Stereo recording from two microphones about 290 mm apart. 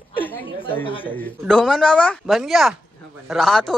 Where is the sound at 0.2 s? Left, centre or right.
Centre.